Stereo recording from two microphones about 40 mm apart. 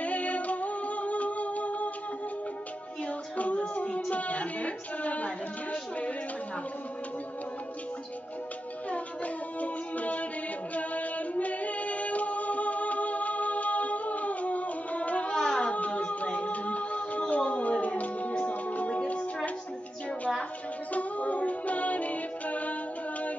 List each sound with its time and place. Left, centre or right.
0.0 s music: left
3.3 s music: left
8.9 s music: left
10.7 s female singing: left
15.3 s a sound: centre
15.6 s a capella: left
18.4 s music: left
20.9 s music: left